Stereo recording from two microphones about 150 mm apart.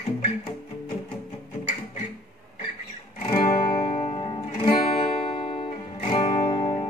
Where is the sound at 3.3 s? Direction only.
40° left (ahead or behind).